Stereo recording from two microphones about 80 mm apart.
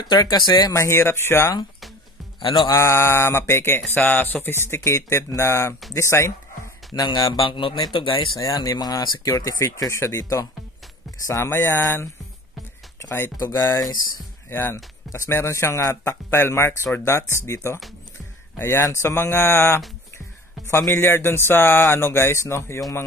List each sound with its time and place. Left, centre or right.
0.0 s speech: left
0.7 s speech: left
2.4 s speech: left
2.7 s speech: left
6.9 s speech: left
7.3 s speech: left
8.4 s speech: left
13.1 s speech: left
18.6 s speech: left
20.9 s speech: left